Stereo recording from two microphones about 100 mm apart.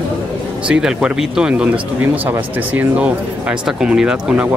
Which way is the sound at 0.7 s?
10° right (ahead or behind).